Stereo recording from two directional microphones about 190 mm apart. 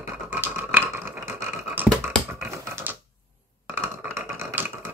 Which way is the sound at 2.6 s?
10° right (ahead or behind).